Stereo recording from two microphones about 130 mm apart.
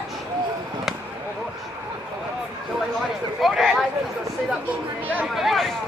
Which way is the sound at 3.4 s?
Centre (ahead or behind).